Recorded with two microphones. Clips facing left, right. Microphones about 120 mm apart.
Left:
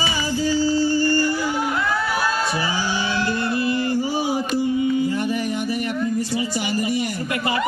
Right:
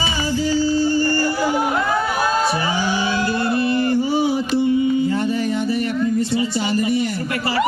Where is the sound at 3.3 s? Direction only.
25° right (ahead or behind).